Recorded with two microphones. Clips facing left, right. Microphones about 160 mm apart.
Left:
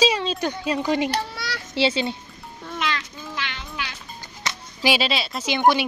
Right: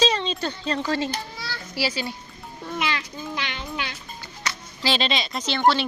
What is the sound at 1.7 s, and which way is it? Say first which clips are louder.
Speech: left 6 dB; 25° left (ahead or behind).